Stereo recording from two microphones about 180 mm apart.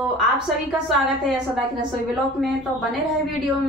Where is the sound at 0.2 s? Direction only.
Centre (ahead or behind).